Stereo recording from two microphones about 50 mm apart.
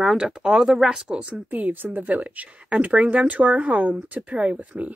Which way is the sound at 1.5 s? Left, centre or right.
Right.